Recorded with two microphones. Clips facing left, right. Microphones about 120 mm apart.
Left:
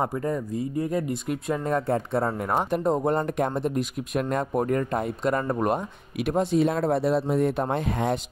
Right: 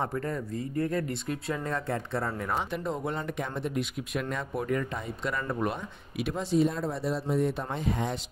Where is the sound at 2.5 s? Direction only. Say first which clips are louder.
Left 10 dB; 45° left (ahead or behind).